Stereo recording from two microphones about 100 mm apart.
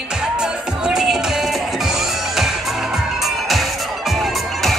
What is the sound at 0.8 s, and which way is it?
Music, 5° right (ahead or behind).